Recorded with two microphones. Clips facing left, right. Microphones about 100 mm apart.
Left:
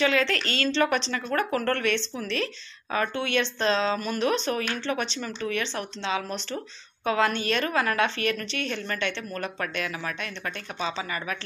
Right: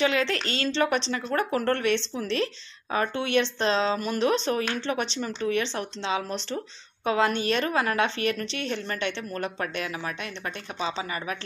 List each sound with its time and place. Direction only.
0.0 s speech: 25° right (ahead or behind)